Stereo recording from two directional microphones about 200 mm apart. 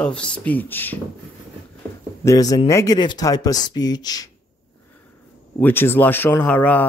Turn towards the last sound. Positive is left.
turn(degrees=5)  # may be behind; listen again after turning